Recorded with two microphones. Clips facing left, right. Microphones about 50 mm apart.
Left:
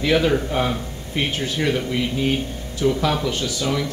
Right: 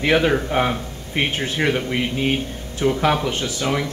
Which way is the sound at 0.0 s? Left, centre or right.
Right.